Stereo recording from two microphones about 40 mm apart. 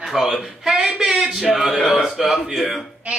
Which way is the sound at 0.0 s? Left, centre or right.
Centre.